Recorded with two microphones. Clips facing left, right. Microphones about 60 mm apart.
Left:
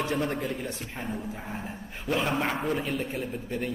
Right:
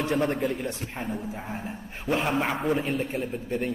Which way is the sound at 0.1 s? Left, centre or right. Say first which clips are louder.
Right 3 dB; centre.